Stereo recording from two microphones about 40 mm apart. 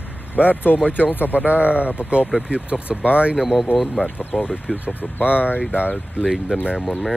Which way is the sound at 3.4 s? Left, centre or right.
Centre.